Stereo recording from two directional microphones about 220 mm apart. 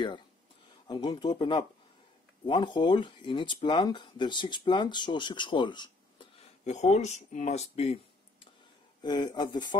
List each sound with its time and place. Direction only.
0.8 s speech: 20° left (ahead or behind)
6.6 s speech: 30° left (ahead or behind)
9.0 s speech: 20° left (ahead or behind)